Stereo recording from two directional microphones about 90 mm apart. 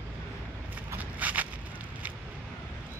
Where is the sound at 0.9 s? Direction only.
20° right (ahead or behind).